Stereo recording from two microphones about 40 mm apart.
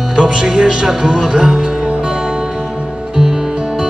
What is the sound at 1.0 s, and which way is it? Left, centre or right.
Music, centre.